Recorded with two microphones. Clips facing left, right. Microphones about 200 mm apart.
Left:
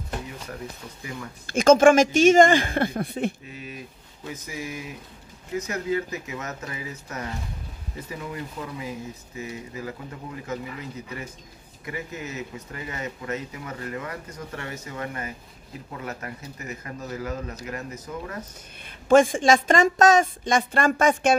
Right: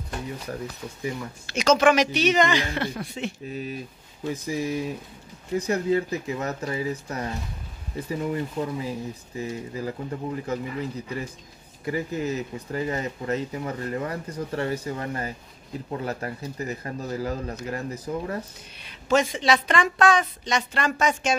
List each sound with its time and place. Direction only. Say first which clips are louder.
1.5 s a woman's voice: left 4 dB; 50° left (ahead or behind)
4.3 s speech: right 7 dB; 35° right (ahead or behind)
18.9 s a woman's voice: left 6 dB; 50° left (ahead or behind)